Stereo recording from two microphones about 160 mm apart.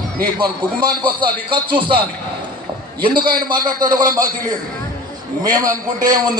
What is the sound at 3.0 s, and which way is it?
A man's voice, 30° right (ahead or behind).